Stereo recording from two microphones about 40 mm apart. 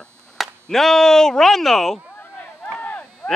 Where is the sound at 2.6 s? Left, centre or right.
Left.